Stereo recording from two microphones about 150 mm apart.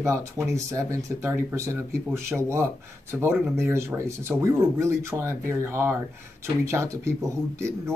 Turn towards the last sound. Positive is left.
turn(degrees=-20)  # may be behind; listen again after turning